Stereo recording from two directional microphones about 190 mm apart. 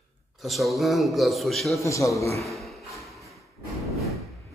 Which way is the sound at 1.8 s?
15° left (ahead or behind).